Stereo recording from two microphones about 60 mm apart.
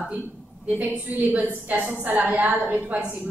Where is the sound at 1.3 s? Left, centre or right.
Right.